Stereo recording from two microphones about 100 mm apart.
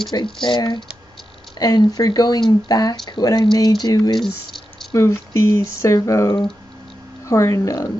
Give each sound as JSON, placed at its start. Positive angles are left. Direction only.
{"t": 0.1, "sound": "speech", "side_deg": 50}
{"t": 4.9, "sound": "speech", "side_deg": 30}